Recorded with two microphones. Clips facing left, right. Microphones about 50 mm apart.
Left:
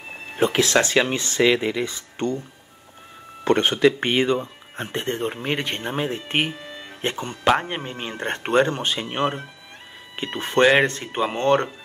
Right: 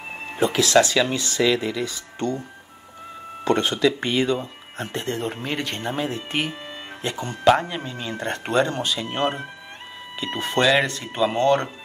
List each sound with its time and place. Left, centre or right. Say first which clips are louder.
0.4 s speech: right 1 dB; left
3.4 s speech: left 2 dB; left
10.1 s speech: left 2 dB; left